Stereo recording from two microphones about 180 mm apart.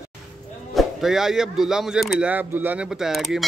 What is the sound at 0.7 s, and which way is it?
A man's voice, centre (ahead or behind).